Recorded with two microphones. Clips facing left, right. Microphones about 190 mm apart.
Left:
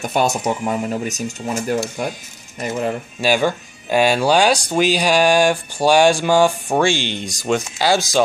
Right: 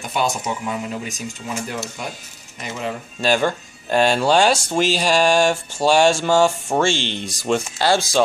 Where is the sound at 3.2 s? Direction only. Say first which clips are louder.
Left 1 dB; 5° left (ahead or behind).